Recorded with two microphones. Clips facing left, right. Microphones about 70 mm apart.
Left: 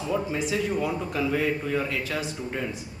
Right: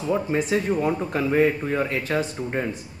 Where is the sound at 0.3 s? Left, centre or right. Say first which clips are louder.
Right 4 dB; right.